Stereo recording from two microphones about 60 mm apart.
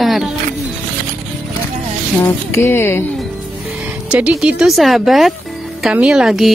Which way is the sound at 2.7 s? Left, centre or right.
Left.